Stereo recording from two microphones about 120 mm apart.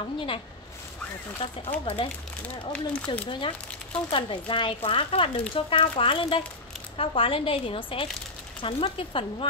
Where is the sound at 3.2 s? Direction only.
45° left (ahead or behind).